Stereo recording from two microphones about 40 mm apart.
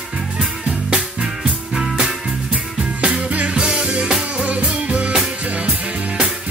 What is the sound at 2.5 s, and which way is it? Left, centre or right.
Music, right.